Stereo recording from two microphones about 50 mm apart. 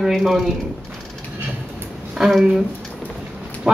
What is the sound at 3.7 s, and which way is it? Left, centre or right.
Dog, centre.